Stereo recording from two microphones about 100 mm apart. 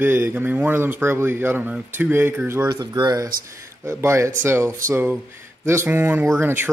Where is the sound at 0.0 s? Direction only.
20° right (ahead or behind).